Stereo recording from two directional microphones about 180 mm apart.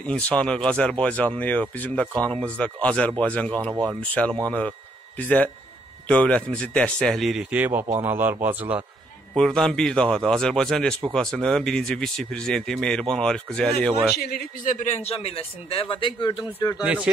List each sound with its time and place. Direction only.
0.0 s speech: 5° left (ahead or behind); by 8.8 s 10° right (ahead or behind)
9.3 s speech: 5° left (ahead or behind)
14.1 s a man's voice: 55° left (ahead or behind); by 16.8 s 20° left (ahead or behind)
16.8 s speech: 5° right (ahead or behind)